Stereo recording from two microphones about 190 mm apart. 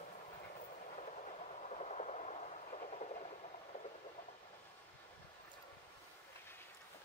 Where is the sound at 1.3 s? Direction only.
35° left (ahead or behind).